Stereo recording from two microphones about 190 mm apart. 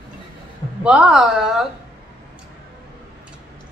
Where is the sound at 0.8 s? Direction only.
5° right (ahead or behind).